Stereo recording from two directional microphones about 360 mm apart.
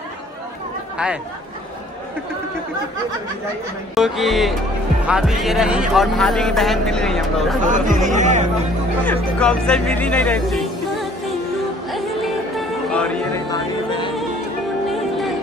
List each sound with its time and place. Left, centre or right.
3.9 s speech: centre
7.6 s speech: right
9.0 s speech: centre
11.9 s music: centre
14.9 s music: centre